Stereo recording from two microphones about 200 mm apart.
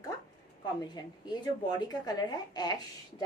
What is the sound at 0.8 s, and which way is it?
A woman's voice, 20° left (ahead or behind).